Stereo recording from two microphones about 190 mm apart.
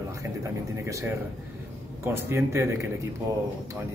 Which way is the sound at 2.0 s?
10° right (ahead or behind).